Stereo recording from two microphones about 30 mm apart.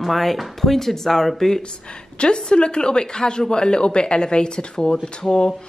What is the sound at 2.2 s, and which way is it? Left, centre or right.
A woman's voice, left.